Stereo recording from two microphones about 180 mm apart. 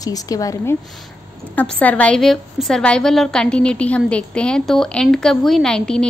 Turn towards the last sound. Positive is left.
turn(degrees=5)  # may be behind; listen again after turning